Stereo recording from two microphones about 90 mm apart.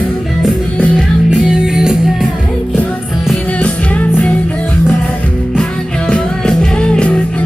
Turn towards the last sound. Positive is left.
turn(degrees=10)  # may be behind; listen again after turning